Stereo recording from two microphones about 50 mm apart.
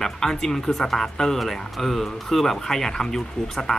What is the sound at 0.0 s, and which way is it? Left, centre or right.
Speech, centre.